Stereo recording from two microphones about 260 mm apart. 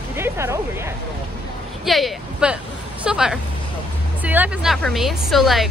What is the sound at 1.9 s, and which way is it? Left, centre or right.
A woman's voice, centre.